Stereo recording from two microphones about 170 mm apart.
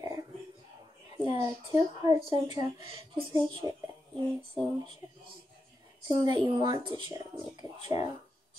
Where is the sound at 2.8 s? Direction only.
30° right (ahead or behind).